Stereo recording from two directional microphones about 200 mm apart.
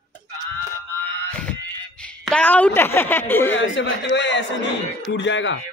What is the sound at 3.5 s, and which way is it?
A man's voice, 70° left (ahead or behind).